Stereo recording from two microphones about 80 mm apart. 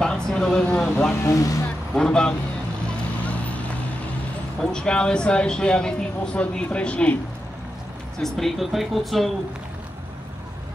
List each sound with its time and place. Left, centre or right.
0.0 s vehicle: centre
1.1 s speech: left
2.0 s speech: centre
3.3 s vehicle: centre
4.6 s speech: centre
8.2 s speech: centre